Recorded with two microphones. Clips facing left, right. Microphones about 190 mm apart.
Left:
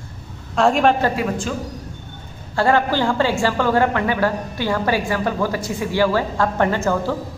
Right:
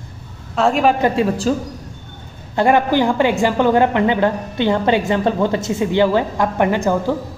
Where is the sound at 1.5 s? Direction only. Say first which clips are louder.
Right 7 dB; 35° right (ahead or behind).